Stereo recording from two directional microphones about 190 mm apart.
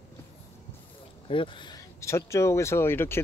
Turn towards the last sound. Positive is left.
turn(degrees=10)  # may be behind; listen again after turning